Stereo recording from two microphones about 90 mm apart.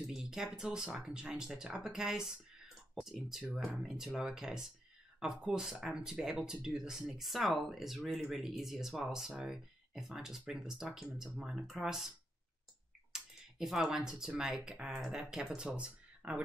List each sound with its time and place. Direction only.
0.0 s speech: 5° right (ahead or behind)
13.1 s speech: 5° right (ahead or behind)